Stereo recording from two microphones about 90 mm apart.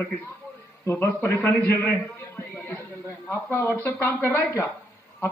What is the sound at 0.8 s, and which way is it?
Speech, 20° left (ahead or behind).